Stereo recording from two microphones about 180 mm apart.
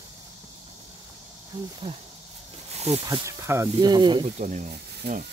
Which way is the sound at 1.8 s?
25° right (ahead or behind).